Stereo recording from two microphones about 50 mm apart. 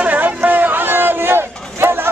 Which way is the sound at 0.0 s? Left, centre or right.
Right.